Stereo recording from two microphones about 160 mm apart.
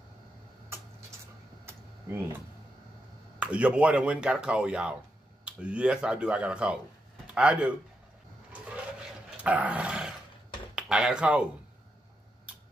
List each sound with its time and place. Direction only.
1.7 s a sound: 15° right (ahead or behind)
3.3 s speech: 5° right (ahead or behind)
9.4 s dog: 10° right (ahead or behind)
10.7 s speech: 5° right (ahead or behind)